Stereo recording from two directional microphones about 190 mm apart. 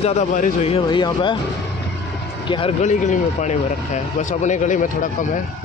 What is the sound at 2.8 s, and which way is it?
Speech, 40° left (ahead or behind).